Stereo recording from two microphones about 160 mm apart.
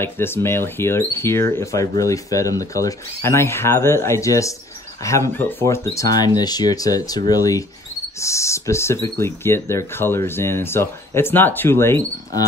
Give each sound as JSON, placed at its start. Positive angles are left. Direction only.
{"t": 0.0, "sound": "speech", "side_deg": 15}